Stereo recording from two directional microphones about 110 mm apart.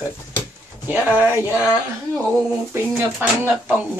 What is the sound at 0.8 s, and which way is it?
Speech, 15° right (ahead or behind).